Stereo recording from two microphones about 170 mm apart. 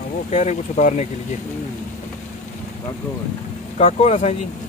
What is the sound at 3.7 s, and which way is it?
Speech, 40° left (ahead or behind).